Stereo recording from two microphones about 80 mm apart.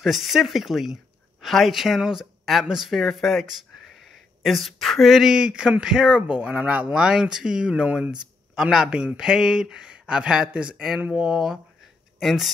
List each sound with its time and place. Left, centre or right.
0.0 s speech: centre
11.2 s speech: centre